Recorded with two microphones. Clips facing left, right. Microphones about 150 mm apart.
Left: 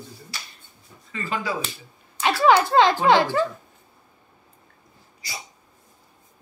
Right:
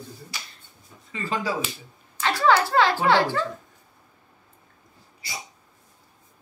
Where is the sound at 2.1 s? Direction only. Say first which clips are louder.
Left 3 dB; 15° left (ahead or behind).